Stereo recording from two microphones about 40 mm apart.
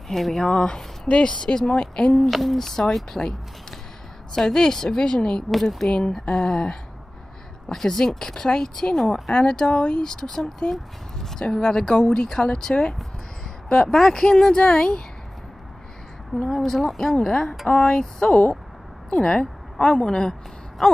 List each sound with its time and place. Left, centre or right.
0.1 s speech: centre
0.5 s speech: centre
1.0 s speech: left
2.2 s speech: centre
5.5 s speech: centre
5.9 s speech: left
16.4 s speech: centre; by 17.9 s left
17.9 s a woman's voice: centre
20.8 s speech: centre